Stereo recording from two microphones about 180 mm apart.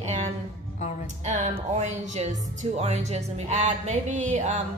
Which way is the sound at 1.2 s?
40° right (ahead or behind).